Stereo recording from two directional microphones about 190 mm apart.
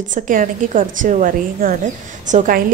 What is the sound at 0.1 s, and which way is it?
A woman's voice, 45° right (ahead or behind).